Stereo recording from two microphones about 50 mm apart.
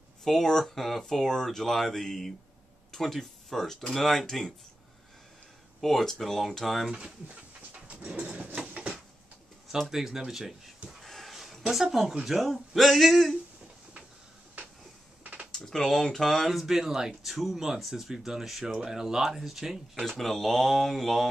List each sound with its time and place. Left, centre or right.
0.2 s speech: centre
5.8 s speech: centre
7.7 s dog: right
9.7 s speech: centre
10.9 s a sound: centre
11.7 s speech: centre
15.5 s speech: centre
20.1 s speech: centre